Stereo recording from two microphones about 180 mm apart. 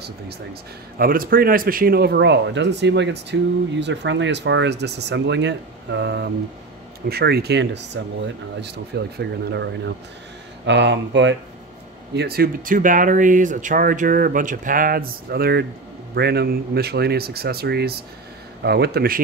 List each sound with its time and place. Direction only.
0.9 s speech: 55° right (ahead or behind); by 11.3 s 85° right
12.2 s speech: 60° right (ahead or behind)